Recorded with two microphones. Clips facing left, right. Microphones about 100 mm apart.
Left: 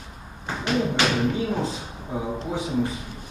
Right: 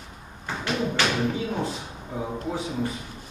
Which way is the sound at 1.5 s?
20° left (ahead or behind).